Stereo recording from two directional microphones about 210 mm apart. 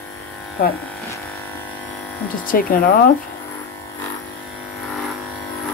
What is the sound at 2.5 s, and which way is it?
Speech, 40° left (ahead or behind).